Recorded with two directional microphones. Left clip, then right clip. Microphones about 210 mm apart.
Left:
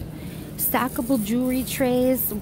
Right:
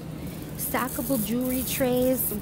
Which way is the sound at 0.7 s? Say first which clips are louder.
Left 4 dB; 20° left (ahead or behind).